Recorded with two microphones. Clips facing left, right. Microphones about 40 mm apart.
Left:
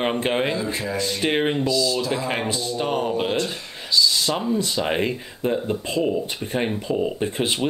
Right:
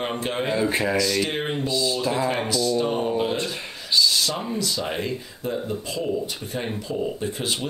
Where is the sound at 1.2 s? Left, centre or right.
Left.